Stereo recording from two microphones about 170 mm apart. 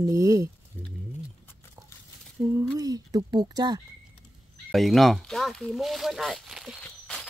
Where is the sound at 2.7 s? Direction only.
20° right (ahead or behind).